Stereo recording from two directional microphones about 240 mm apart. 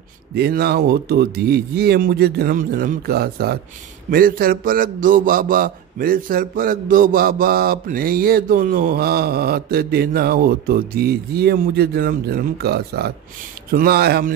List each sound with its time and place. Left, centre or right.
0.4 s a man's voice: right